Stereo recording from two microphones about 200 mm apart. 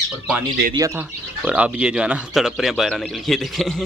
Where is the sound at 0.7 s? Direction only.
10° right (ahead or behind).